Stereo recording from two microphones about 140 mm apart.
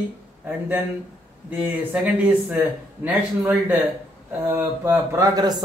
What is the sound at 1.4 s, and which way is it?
Speech, 10° right (ahead or behind).